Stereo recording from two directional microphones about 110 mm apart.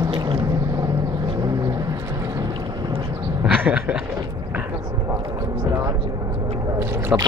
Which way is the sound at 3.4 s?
10° right (ahead or behind).